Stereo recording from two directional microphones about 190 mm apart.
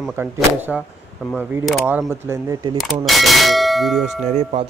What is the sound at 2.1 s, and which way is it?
Speech, 15° right (ahead or behind).